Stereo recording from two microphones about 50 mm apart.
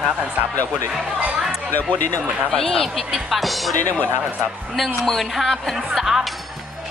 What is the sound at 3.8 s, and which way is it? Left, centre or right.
Speech, left.